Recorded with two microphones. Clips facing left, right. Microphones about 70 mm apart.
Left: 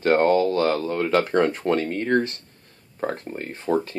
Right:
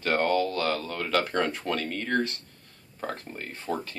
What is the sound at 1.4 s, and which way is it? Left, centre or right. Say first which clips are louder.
Speech: left 8 dB; left.